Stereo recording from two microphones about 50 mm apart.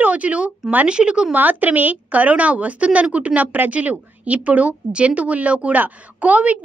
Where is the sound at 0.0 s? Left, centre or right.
Right.